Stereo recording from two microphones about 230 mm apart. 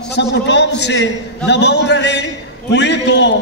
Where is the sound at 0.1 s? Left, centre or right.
Left.